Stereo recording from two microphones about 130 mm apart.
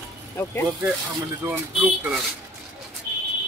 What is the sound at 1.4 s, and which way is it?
Speech, 10° right (ahead or behind).